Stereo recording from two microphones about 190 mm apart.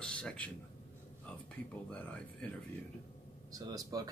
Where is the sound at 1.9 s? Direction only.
5° left (ahead or behind).